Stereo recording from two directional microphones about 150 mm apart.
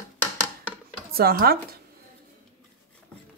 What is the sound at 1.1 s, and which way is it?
Speech, 85° right.